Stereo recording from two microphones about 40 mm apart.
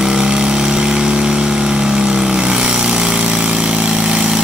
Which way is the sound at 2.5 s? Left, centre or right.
Right.